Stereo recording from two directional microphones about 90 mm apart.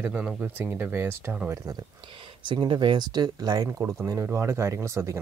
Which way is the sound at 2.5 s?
60° right (ahead or behind).